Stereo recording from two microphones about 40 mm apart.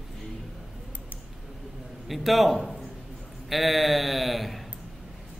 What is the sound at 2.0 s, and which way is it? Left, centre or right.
A man's voice, centre.